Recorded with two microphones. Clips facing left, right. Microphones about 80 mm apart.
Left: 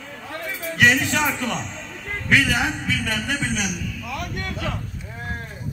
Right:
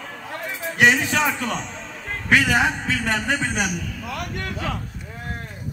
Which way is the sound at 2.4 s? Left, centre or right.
Right.